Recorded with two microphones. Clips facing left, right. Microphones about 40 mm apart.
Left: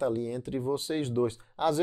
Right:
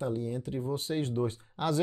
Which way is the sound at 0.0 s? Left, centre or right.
Left.